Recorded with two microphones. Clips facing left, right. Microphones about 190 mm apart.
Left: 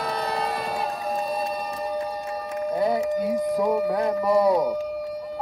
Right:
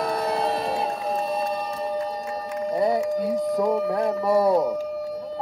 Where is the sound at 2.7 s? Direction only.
Centre (ahead or behind).